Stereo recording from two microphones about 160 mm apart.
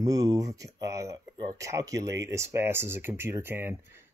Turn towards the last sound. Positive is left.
turn(degrees=-15)  # may be behind; listen again after turning